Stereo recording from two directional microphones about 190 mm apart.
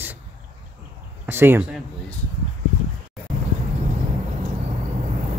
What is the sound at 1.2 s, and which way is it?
Speech, 10° right (ahead or behind).